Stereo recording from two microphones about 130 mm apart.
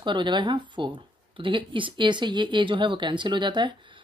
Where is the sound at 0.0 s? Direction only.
35° right (ahead or behind).